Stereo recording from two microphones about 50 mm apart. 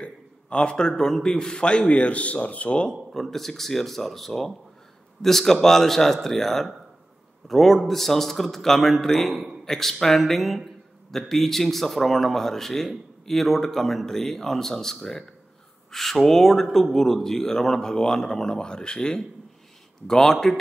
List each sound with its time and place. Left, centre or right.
0.0 s a man's voice: left
2.9 s speech: centre